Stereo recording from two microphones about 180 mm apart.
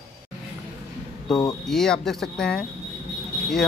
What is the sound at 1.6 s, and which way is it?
Speech, 5° left (ahead or behind).